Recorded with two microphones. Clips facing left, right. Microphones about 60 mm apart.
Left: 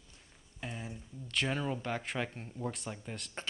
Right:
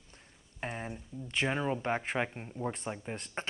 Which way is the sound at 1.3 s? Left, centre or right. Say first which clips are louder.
Right 3 dB; right.